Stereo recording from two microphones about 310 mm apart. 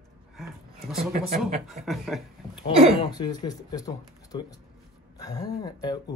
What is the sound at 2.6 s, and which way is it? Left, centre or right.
Speech, centre.